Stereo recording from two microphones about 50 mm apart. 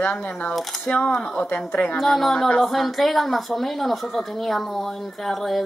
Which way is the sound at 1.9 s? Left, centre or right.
Centre.